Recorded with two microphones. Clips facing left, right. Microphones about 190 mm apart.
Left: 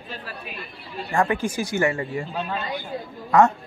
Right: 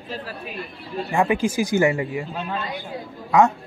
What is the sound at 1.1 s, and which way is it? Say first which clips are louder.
Speech: right 2 dB; 5° right (ahead or behind).